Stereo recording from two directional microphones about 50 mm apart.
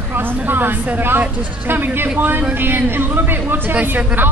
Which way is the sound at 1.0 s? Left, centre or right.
Right.